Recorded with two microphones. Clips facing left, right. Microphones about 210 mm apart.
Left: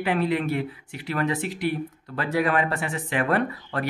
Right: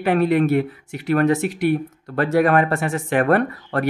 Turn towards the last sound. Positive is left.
turn(degrees=-50)  # may be behind; listen again after turning